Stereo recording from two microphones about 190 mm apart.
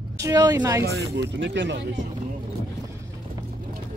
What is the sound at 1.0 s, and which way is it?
Speech, 65° right (ahead or behind).